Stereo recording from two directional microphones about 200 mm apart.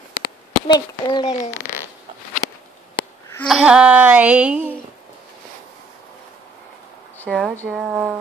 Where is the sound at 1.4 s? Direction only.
10° left (ahead or behind).